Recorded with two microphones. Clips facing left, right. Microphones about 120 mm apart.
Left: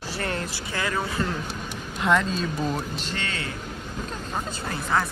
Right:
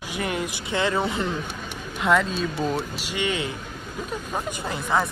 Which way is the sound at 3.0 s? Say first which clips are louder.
Right 5 dB; 15° right (ahead or behind).